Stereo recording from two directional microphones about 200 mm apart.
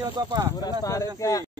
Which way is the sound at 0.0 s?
20° right (ahead or behind).